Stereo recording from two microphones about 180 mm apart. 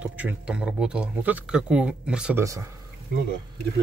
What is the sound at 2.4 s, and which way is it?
Speech, 15° right (ahead or behind).